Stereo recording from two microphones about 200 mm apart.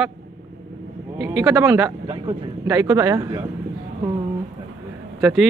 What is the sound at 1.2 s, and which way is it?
Speech, 15° right (ahead or behind).